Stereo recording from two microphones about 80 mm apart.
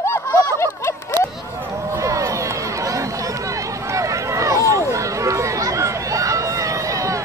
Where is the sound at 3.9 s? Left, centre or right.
Right.